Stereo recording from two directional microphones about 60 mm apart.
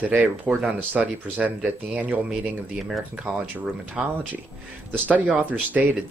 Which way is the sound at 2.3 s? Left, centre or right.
Centre.